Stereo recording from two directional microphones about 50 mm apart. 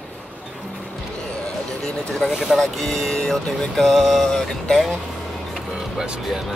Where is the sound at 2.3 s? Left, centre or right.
Centre.